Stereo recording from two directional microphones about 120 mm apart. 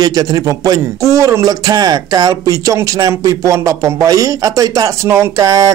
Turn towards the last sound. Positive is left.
turn(degrees=-30)  # may be behind; listen again after turning